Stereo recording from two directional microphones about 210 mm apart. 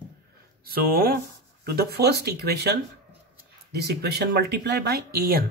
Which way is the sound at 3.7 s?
50° right (ahead or behind).